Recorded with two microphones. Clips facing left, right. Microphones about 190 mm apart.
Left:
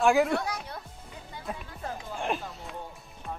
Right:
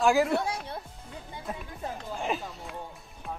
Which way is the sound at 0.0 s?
Centre (ahead or behind).